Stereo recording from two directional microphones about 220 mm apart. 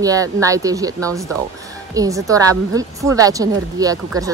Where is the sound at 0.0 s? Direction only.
15° right (ahead or behind).